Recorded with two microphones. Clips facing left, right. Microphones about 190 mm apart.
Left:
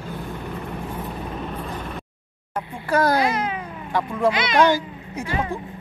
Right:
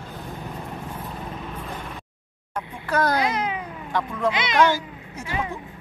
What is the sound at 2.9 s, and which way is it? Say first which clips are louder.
Speech: left 3 dB; 10° left (ahead or behind).